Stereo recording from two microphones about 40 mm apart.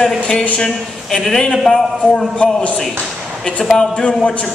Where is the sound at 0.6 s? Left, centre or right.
Centre.